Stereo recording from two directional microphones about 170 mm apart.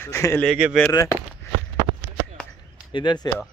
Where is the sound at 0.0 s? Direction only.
15° left (ahead or behind).